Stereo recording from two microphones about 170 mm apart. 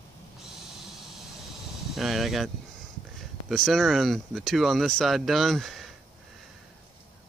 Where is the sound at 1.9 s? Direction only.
Centre (ahead or behind).